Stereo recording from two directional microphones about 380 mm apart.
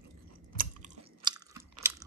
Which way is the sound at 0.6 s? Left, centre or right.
Centre.